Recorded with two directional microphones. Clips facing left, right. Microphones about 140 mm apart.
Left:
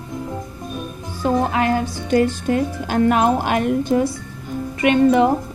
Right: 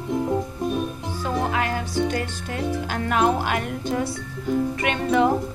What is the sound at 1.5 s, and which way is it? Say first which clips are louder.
A woman's voice: left 6 dB; 30° left (ahead or behind).